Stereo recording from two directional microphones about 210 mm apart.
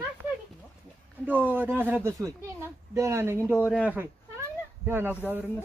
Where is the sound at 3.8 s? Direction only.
10° right (ahead or behind).